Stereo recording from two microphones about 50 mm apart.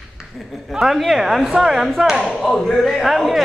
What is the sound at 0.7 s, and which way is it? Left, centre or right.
A woman's voice, centre.